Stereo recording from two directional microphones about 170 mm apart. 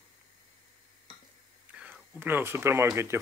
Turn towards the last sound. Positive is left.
turn(degrees=-15)  # may be behind; listen again after turning